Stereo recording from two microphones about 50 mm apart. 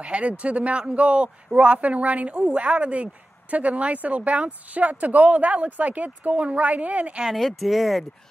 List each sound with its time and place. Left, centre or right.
0.0 s a man's voice: right
7.3 s speech: centre